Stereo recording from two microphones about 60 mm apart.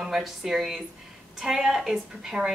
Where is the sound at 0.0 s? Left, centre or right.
Centre.